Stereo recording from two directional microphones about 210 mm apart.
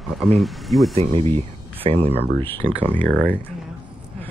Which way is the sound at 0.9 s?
30° right (ahead or behind).